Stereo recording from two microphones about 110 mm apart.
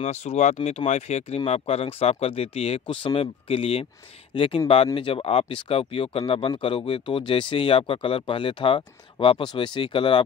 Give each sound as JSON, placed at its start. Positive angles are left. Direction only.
{"t": 0.0, "sound": "speech", "side_deg": 85}